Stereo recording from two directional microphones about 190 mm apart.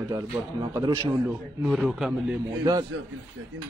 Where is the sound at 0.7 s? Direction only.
20° right (ahead or behind).